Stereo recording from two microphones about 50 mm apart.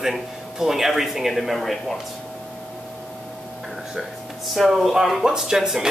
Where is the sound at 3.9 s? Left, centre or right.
Centre.